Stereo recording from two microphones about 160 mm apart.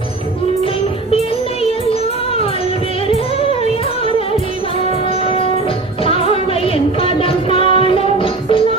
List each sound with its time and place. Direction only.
6.0 s music: 35° left (ahead or behind)